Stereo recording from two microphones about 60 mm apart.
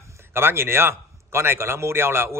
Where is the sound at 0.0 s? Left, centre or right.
Right.